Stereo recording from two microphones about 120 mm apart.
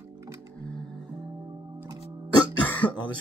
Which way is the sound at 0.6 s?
5° left (ahead or behind).